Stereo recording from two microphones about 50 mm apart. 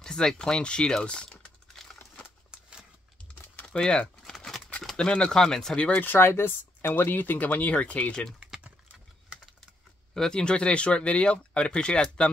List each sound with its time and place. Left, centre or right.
0.0 s speech: centre
3.6 s speech: centre
5.9 s speech: left
10.1 s speech: centre